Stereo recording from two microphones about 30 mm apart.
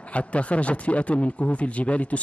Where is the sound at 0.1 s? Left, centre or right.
Left.